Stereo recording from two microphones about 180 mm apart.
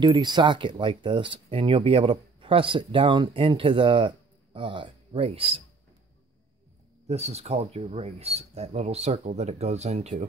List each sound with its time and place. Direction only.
0.0 s speech: 25° right (ahead or behind)
7.1 s speech: 35° right (ahead or behind)